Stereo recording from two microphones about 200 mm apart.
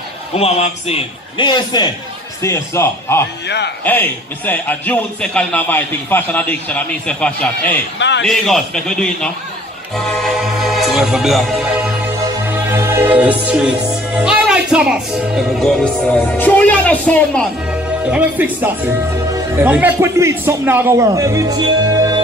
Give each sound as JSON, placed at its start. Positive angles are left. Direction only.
{"t": 0.3, "sound": "a man's voice", "side_deg": 30}
{"t": 3.4, "sound": "a man's voice", "side_deg": 55}
{"t": 3.8, "sound": "a man's voice", "side_deg": 10}
{"t": 8.0, "sound": "a man's voice", "side_deg": 60}
{"t": 8.3, "sound": "a man's voice", "side_deg": 0}
{"t": 9.9, "sound": "music", "side_deg": 0}
{"t": 17.6, "sound": "a man's voice", "side_deg": -5}